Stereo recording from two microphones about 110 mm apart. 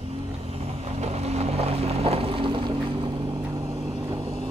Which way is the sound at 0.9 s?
75° right (ahead or behind).